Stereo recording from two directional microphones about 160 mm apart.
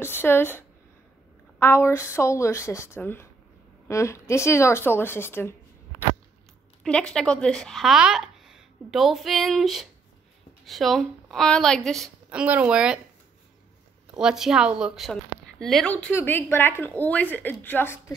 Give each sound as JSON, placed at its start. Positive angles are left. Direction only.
{"t": 0.0, "sound": "speech", "side_deg": 15}
{"t": 14.1, "sound": "speech", "side_deg": -5}